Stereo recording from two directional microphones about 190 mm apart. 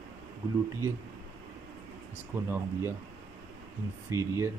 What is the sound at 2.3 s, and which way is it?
Speech, 15° right (ahead or behind).